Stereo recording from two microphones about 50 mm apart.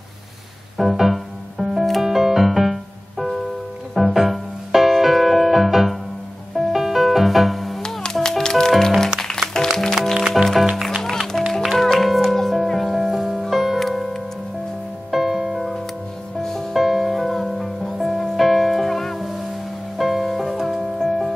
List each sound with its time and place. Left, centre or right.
0.7 s music: centre
8.0 s music: centre
10.1 s music: centre